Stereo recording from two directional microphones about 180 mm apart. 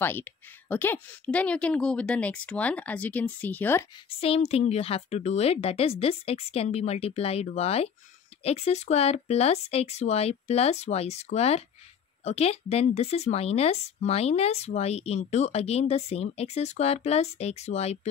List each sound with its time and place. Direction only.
0.0 s a woman's voice: 10° left (ahead or behind)
4.2 s speech: 35° left (ahead or behind)